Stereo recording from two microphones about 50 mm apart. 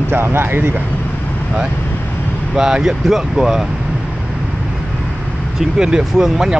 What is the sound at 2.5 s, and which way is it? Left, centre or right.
Speech, centre.